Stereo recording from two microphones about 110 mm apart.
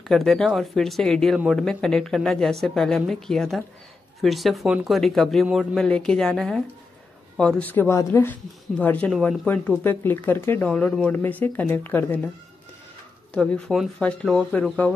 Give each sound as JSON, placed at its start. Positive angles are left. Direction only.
{"t": 0.1, "sound": "speech", "side_deg": 5}
{"t": 13.3, "sound": "speech", "side_deg": 5}